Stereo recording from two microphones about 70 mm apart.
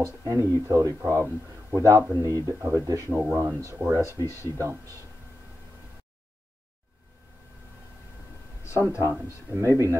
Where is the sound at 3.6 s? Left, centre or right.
Right.